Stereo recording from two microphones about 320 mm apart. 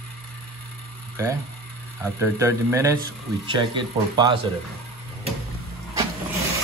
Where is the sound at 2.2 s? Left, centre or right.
Centre.